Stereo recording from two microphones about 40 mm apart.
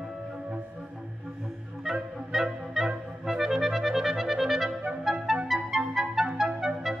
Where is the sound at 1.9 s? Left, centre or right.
Centre.